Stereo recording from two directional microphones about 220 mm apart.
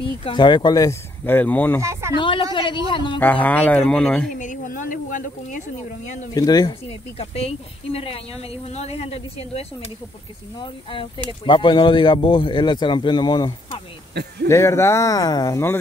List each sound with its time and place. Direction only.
0.0 s speech: 25° left (ahead or behind)
1.8 s speech: 15° right (ahead or behind)
2.1 s speech: 20° left (ahead or behind)
3.2 s speech: 5° left (ahead or behind)
4.3 s speech: 35° left (ahead or behind)
6.3 s speech: 15° left (ahead or behind)
14.5 s speech: 15° left (ahead or behind)